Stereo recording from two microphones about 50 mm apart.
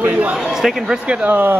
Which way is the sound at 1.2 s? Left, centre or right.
Right.